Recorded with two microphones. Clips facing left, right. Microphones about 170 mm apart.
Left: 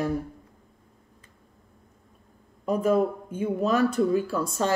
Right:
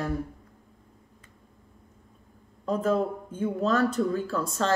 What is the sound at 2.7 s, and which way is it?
A woman's voice, 10° left (ahead or behind).